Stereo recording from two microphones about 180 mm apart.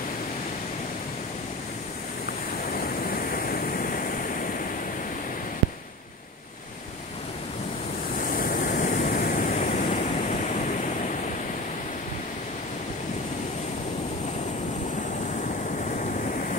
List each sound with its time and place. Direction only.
2.7 s vehicle: 55° left (ahead or behind)
8.2 s waves: 50° left (ahead or behind)
16.0 s vehicle: 45° left (ahead or behind)